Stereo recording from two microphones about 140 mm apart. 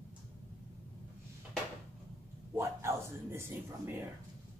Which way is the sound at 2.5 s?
20° right (ahead or behind).